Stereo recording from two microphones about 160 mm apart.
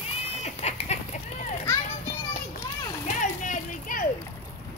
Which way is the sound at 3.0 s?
50° left (ahead or behind).